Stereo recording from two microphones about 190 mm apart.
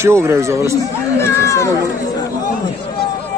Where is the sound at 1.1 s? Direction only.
15° left (ahead or behind).